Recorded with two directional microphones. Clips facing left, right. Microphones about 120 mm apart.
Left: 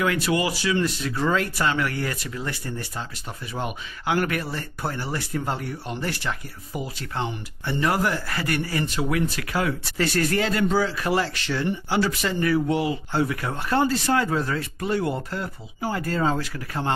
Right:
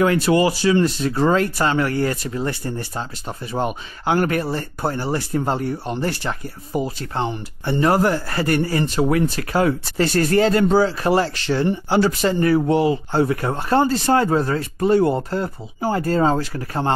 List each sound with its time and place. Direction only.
0.0 s speech: 35° right (ahead or behind)